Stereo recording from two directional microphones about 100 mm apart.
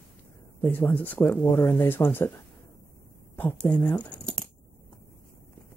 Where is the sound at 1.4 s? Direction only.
35° left (ahead or behind).